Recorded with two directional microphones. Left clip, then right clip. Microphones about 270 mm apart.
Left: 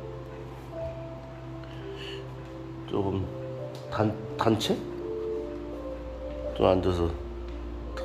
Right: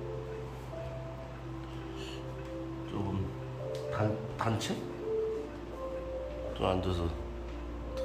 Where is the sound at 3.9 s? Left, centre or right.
Left.